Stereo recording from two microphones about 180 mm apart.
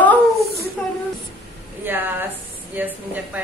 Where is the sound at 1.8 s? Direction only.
10° right (ahead or behind).